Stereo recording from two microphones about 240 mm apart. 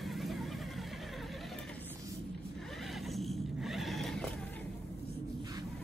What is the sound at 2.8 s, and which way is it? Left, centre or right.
Neigh, centre.